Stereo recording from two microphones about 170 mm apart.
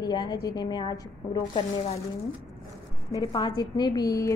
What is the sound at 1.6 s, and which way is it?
Speech, 40° left (ahead or behind).